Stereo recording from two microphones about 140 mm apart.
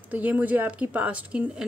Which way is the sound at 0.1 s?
10° right (ahead or behind).